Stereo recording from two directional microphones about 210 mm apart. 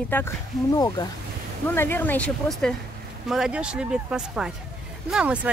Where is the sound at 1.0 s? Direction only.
20° left (ahead or behind).